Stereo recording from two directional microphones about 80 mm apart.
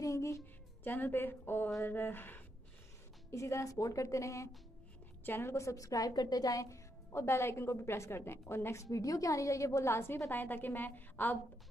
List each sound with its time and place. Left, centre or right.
0.0 s music: left
0.8 s a woman's voice: left
3.3 s a woman's voice: left
5.2 s a woman's voice: left
8.9 s a woman's voice: left